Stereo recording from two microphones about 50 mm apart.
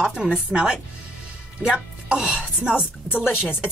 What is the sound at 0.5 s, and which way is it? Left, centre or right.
A woman's voice, right.